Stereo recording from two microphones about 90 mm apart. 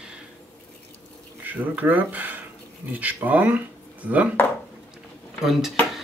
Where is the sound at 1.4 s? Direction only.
20° right (ahead or behind).